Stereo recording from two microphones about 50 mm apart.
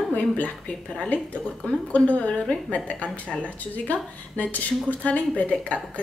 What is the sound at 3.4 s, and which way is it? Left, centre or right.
Speech, left.